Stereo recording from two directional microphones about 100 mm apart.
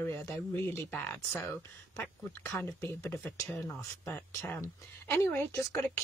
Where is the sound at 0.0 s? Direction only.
30° left (ahead or behind).